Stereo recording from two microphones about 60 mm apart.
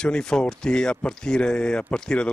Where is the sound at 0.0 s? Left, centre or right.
Centre.